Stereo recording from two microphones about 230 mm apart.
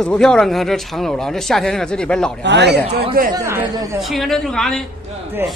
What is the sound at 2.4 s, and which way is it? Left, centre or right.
Speech, right.